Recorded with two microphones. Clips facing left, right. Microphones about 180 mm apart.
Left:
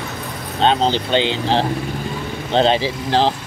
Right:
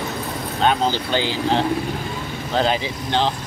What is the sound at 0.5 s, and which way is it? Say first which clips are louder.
Speech: left 3 dB; 25° left (ahead or behind).